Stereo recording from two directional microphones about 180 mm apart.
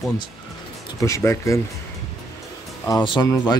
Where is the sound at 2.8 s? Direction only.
25° left (ahead or behind).